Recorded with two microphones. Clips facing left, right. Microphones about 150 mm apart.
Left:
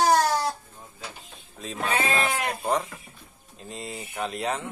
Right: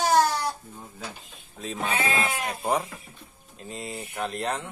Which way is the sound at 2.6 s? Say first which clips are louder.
Even; 10° right (ahead or behind).